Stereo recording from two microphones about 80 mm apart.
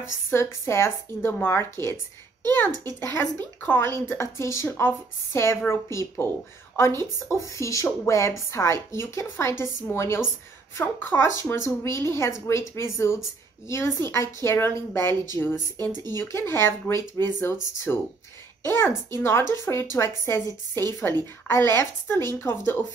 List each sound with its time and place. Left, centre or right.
0.3 s a woman's voice: left